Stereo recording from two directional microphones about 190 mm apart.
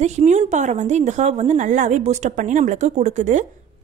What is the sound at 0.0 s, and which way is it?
A woman's voice, 35° right (ahead or behind).